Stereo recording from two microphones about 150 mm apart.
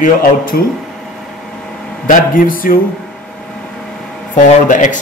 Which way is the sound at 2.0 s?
65° left (ahead or behind).